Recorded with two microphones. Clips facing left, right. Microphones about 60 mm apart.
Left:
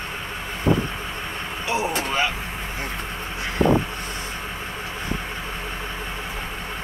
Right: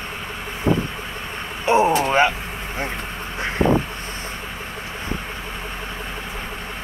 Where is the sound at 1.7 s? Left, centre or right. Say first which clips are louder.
Right 9 dB; right.